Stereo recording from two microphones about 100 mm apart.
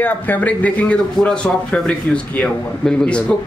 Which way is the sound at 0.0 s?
15° left (ahead or behind).